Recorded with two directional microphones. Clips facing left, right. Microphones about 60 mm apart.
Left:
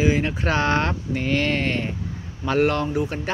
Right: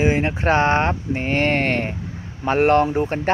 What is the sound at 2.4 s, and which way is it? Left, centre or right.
Speech, right.